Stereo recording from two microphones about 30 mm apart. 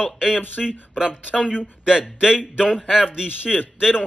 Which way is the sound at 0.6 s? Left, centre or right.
Centre.